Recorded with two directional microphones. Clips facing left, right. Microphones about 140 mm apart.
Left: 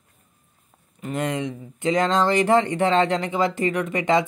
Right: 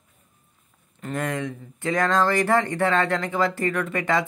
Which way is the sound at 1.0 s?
20° left (ahead or behind).